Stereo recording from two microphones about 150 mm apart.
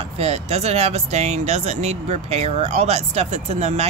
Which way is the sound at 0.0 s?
45° right (ahead or behind).